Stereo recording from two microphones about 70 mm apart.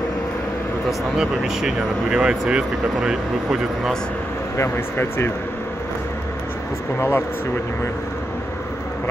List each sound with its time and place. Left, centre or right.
1.1 s speech: centre
4.6 s speech: left
7.0 s speech: left